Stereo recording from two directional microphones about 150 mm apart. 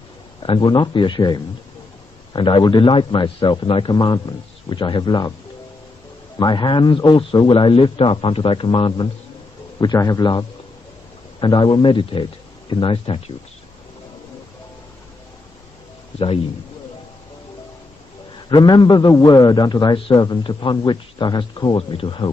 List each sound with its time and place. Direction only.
0.4 s a man's voice: 30° left (ahead or behind)
6.3 s a man's voice: 30° left (ahead or behind)
18.5 s a man's voice: 30° left (ahead or behind)